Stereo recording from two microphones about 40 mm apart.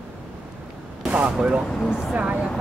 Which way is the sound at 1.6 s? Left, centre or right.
Centre.